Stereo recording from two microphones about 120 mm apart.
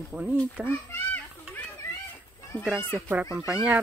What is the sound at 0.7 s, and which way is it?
Children playing, 15° left (ahead or behind).